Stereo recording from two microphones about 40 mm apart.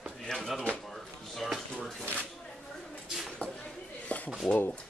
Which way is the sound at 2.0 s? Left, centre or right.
Left.